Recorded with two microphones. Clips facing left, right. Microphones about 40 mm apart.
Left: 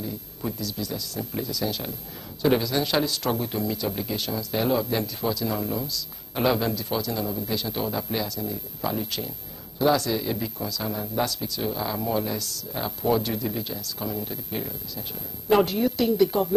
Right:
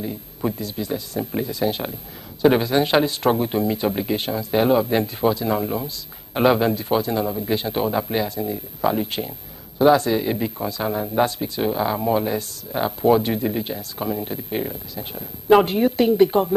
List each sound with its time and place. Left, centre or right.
0.0 s speech: right